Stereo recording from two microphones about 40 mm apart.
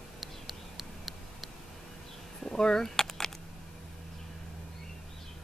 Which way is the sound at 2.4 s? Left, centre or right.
Centre.